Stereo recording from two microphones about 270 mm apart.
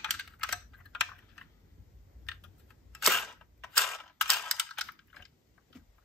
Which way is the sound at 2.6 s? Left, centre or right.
Centre.